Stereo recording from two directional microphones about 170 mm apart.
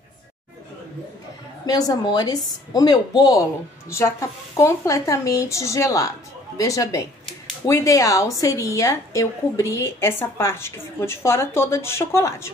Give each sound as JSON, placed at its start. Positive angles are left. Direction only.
{"t": 1.7, "sound": "a woman's voice", "side_deg": 20}